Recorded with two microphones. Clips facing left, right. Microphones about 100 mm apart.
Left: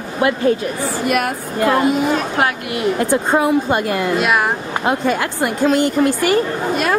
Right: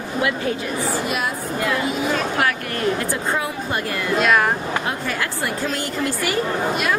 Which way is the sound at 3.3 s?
25° left (ahead or behind).